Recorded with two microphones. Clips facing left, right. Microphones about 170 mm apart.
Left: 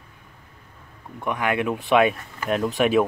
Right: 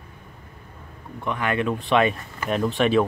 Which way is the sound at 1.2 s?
10° left (ahead or behind).